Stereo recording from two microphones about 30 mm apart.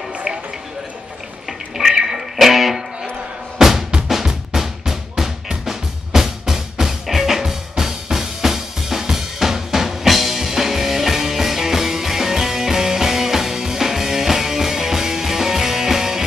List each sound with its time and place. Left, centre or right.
1.9 s music: centre
4.1 s drum: centre
5.7 s music: centre